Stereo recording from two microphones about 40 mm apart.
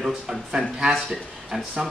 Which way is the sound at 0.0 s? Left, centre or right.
Centre.